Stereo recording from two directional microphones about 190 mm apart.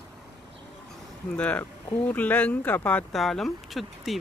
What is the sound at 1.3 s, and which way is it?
Speech, 5° left (ahead or behind).